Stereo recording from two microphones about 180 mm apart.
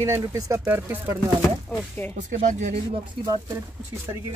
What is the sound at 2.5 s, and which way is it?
Speech, 45° right (ahead or behind).